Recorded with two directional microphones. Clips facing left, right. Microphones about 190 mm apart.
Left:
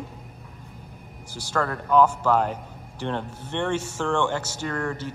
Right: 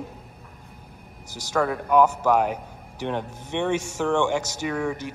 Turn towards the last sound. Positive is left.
turn(degrees=-10)  # may be behind; listen again after turning